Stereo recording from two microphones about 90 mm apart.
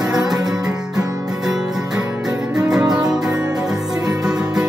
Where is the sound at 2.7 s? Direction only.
5° right (ahead or behind).